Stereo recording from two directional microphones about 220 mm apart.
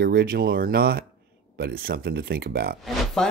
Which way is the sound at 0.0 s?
45° right (ahead or behind).